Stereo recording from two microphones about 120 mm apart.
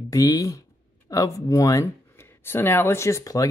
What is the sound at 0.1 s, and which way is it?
Speech, 30° left (ahead or behind).